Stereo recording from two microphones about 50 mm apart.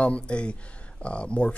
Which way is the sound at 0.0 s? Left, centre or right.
Left.